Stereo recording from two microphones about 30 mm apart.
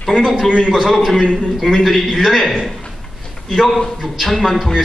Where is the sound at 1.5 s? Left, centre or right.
Centre.